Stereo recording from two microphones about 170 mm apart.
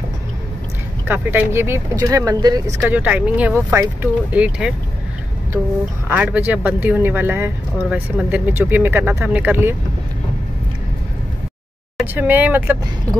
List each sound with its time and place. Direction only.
1.0 s speech: 10° right (ahead or behind)
2.9 s speech: 10° right (ahead or behind)
6.0 s speech: 10° right (ahead or behind)
12.0 s speech: 10° right (ahead or behind)